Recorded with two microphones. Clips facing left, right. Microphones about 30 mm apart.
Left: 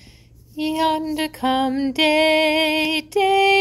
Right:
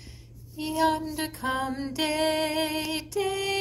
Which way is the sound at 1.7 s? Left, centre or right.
Left.